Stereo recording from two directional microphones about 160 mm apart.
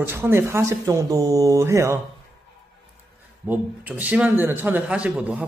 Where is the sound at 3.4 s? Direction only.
10° right (ahead or behind).